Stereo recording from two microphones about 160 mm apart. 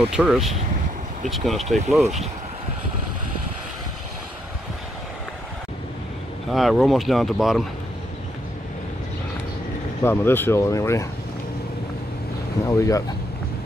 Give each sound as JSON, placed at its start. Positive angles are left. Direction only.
{"t": 0.1, "sound": "speech", "side_deg": -5}
{"t": 6.5, "sound": "speech", "side_deg": 0}
{"t": 10.0, "sound": "speech", "side_deg": 15}
{"t": 12.6, "sound": "speech", "side_deg": 20}